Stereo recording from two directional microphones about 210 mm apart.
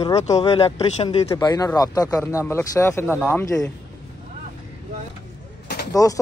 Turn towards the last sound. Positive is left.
turn(degrees=15)  # may be behind; listen again after turning